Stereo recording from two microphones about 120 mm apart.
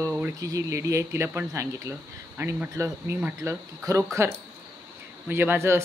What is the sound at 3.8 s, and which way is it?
Speech, 25° right (ahead or behind).